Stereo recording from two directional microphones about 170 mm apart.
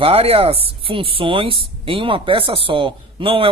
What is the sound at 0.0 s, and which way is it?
Speech, 35° right (ahead or behind).